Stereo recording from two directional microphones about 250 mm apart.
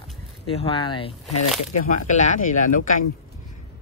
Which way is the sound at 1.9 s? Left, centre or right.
Left.